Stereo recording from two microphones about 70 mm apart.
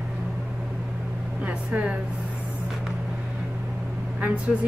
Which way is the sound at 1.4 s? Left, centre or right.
Right.